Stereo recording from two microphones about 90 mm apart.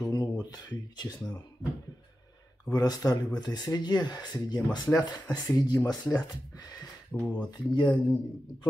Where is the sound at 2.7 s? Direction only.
45° left (ahead or behind).